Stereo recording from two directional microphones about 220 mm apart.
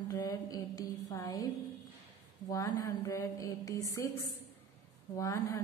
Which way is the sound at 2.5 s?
15° left (ahead or behind).